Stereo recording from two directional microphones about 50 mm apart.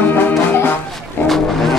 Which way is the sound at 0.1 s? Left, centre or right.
Left.